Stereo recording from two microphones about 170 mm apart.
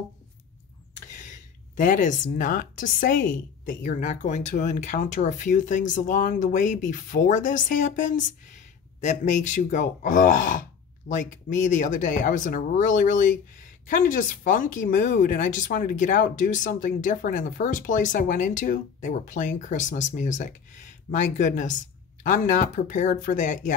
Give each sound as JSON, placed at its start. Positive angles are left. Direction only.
{"t": 1.8, "sound": "speech", "side_deg": 50}